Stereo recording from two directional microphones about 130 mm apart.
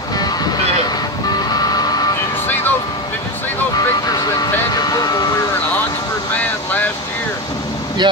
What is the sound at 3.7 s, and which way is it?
Vehicle, 30° left (ahead or behind).